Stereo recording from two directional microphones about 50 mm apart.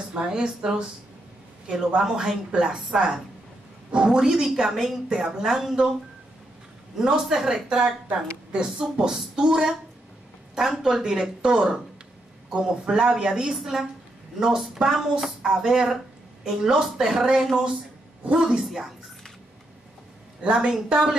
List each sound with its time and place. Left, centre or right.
0.2 s a woman's voice: centre
7.0 s a woman's voice: centre
10.8 s a woman's voice: centre
18.2 s a man's voice: centre
18.6 s a woman's voice: centre
20.4 s a woman's voice: centre